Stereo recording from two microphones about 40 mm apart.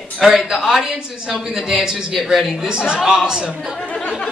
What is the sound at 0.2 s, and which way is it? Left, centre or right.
Speech, centre.